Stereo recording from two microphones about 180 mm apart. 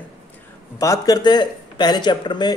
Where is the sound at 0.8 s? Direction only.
20° left (ahead or behind).